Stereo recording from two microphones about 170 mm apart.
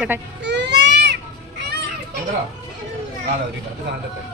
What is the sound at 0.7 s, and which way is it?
Baby cry, 85° right.